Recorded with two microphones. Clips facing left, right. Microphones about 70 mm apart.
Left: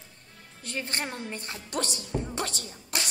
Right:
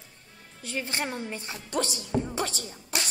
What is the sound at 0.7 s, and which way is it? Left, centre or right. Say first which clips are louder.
A woman's voice: right 2 dB; centre.